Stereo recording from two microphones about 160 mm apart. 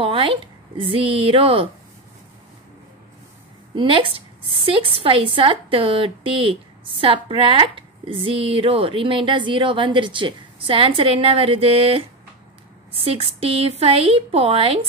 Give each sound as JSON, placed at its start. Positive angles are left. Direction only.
{"t": 0.0, "sound": "a woman's voice", "side_deg": -35}
{"t": 3.7, "sound": "a woman's voice", "side_deg": -30}